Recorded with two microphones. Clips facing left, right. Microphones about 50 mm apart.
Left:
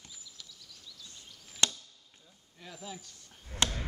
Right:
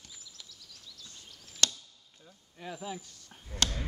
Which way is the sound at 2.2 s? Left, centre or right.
Centre.